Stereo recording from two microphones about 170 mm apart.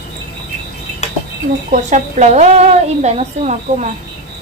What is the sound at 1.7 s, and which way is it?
Speech, 45° right (ahead or behind).